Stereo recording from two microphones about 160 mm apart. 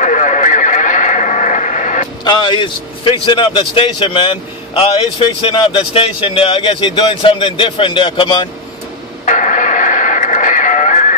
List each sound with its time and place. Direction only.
0.0 s horse: 50° left (ahead or behind)
2.2 s a man's voice: 30° left (ahead or behind)
9.2 s music: 55° left (ahead or behind)